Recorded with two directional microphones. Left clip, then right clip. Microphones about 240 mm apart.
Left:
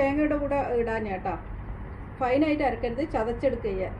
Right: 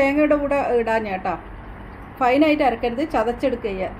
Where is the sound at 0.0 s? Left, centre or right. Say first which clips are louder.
Right 7 dB; right.